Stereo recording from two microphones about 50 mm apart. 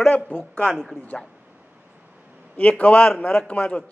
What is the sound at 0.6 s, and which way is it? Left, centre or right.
Speech, centre.